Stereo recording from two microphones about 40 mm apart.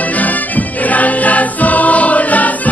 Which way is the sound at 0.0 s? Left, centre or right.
Left.